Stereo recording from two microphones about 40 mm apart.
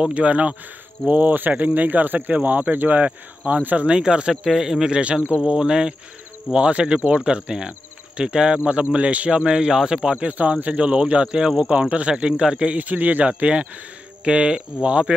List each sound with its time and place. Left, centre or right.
0.1 s speech: right
3.1 s speech: right; by 4.9 s centre
4.9 s speech: right
8.9 s speech: right
10.1 s speech: right
12.7 s speech: right
13.2 s speech: right